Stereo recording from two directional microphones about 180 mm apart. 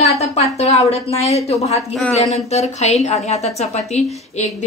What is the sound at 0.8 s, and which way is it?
A woman's voice, 35° left (ahead or behind).